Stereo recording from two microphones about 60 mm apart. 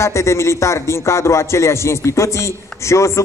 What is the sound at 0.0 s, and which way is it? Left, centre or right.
A man's voice, left.